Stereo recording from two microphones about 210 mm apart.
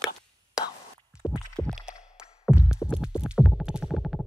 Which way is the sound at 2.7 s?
5° right (ahead or behind).